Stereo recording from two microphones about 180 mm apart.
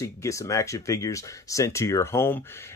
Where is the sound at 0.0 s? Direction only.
15° left (ahead or behind).